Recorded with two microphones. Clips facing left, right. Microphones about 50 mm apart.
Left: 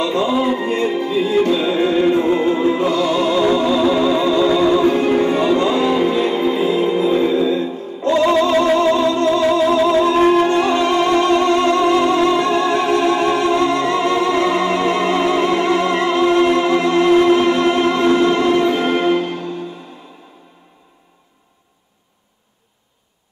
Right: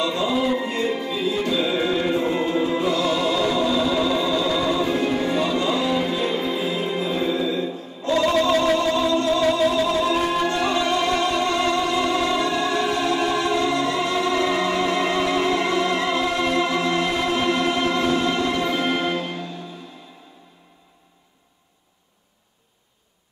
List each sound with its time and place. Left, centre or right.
0.0 s music: left
0.7 s music: left
2.8 s music: left
8.1 s music: centre
8.7 s music: left